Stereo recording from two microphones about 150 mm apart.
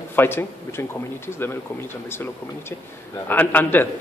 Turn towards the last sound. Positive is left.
turn(degrees=10)  # may be behind; listen again after turning